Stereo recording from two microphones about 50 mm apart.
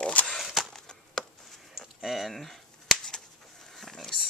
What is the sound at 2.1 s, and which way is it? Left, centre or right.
Cap gun, centre.